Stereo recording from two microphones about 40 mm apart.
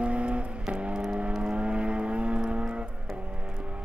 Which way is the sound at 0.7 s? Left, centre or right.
Centre.